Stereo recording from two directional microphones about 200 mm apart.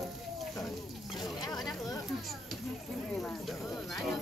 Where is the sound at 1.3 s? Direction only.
20° left (ahead or behind).